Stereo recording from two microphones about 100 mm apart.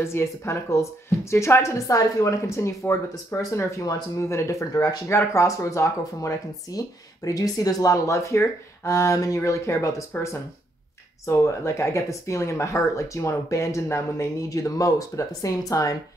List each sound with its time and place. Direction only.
0.0 s speech: 25° left (ahead or behind)
11.2 s speech: 30° left (ahead or behind)